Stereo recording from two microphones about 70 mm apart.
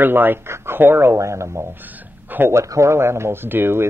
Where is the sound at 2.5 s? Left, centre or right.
Right.